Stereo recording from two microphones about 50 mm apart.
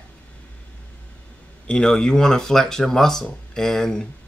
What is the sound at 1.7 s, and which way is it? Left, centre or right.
Speech, centre.